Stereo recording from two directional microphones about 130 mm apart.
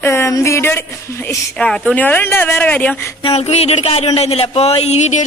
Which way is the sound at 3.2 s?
55° left (ahead or behind).